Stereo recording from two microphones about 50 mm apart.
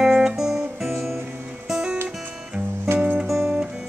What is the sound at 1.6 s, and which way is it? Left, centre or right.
Music, centre.